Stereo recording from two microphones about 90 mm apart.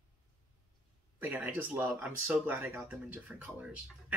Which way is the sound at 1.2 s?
20° right (ahead or behind).